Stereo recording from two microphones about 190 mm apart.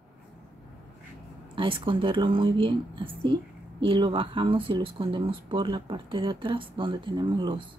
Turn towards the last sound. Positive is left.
turn(degrees=-25)  # may be behind; listen again after turning